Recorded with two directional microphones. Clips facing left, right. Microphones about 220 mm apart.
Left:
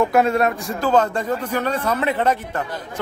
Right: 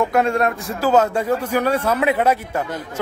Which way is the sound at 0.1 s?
5° left (ahead or behind).